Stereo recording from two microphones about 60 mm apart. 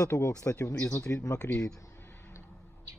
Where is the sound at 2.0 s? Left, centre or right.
Left.